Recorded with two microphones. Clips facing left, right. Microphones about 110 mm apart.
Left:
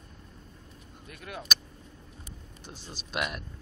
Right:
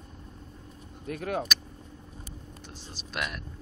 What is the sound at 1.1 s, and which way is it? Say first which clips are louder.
Speech: right 11 dB; 55° right (ahead or behind).